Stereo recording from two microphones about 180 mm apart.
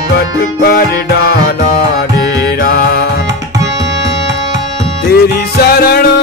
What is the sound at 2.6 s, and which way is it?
Music, 60° left (ahead or behind).